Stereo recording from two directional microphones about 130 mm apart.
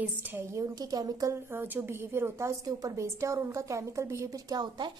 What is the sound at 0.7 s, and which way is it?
Speech, 30° right (ahead or behind).